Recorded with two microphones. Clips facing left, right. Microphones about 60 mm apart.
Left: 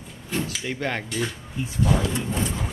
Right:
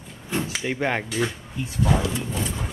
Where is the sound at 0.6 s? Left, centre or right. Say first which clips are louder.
Right 3 dB; centre.